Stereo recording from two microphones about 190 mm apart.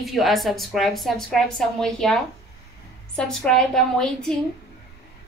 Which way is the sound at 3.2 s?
Centre (ahead or behind).